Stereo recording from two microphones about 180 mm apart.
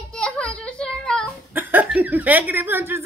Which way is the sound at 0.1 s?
5° left (ahead or behind).